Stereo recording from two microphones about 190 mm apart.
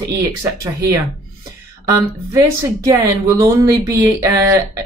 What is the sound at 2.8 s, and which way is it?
Speech, 20° right (ahead or behind).